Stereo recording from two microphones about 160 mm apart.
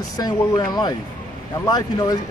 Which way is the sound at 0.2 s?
25° left (ahead or behind).